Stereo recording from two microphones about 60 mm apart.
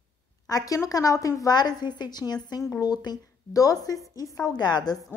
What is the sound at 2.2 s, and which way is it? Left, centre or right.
Speech, right.